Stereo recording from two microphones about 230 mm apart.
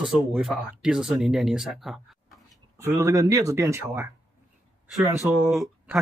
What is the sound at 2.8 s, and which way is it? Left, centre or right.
Speech, centre.